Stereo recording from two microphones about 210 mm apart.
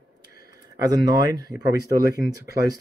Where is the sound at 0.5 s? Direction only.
20° right (ahead or behind).